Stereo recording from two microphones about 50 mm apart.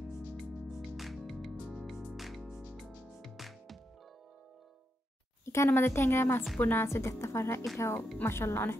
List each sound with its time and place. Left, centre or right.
0.9 s music: centre
5.4 s a sound: left
5.7 s a woman's voice: left
5.9 s a woman's voice: left
8.3 s a woman's voice: left